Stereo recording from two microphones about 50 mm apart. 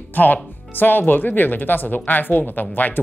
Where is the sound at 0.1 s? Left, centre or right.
Left.